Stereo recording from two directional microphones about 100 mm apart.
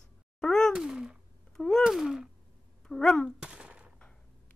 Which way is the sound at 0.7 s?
5° right (ahead or behind).